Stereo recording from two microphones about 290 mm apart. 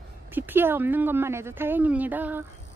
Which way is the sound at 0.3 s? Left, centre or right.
Centre.